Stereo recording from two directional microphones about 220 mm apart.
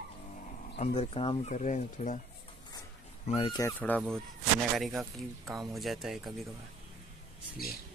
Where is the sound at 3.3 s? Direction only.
25° left (ahead or behind).